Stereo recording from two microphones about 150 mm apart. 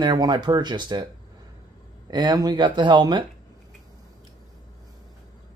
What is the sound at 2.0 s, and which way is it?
A man's voice, 30° right (ahead or behind).